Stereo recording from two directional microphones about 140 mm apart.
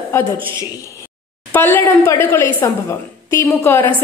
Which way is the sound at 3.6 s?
15° left (ahead or behind).